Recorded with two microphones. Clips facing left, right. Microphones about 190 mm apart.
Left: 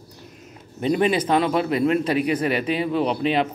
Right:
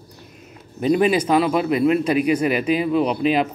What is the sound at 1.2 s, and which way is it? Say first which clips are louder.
Speech: right 2 dB; 10° right (ahead or behind).